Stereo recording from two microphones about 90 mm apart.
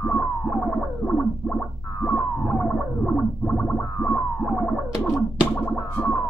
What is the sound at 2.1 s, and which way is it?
Whale vocalization, 10° left (ahead or behind).